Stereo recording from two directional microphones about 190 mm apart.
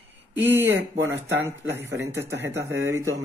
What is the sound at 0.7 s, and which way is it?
Speech, 75° right (ahead or behind).